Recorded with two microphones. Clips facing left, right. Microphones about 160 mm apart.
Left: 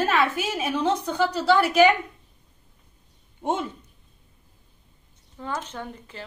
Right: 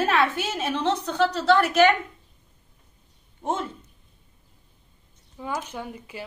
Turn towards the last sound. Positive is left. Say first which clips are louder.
# right 1 dB
turn(degrees=-10)  # may be behind; listen again after turning